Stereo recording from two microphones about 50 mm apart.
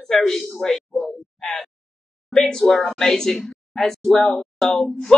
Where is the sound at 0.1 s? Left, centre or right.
Centre.